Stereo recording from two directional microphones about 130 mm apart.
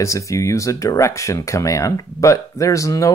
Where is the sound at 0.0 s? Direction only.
25° left (ahead or behind).